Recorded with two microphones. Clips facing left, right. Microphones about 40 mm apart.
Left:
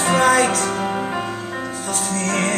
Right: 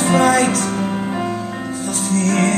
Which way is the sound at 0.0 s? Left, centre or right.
Centre.